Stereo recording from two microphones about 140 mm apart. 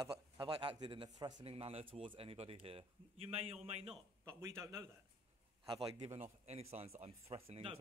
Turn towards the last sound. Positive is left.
turn(degrees=-45)  # may be behind; listen again after turning